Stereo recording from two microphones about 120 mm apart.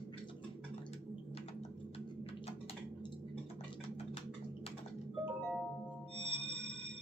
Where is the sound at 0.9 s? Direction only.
60° left (ahead or behind).